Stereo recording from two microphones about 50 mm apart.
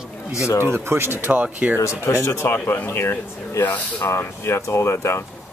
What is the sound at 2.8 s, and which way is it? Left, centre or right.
Speech, left.